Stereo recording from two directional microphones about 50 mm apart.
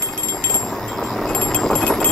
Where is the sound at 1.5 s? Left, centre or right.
Centre.